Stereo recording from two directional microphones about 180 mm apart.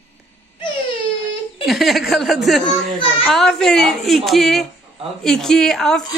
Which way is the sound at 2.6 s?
30° left (ahead or behind).